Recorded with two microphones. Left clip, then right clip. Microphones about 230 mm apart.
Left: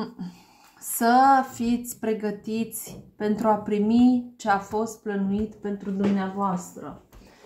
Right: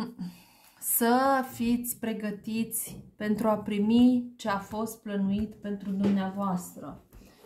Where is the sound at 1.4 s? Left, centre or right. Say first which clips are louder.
Left 5 dB; right.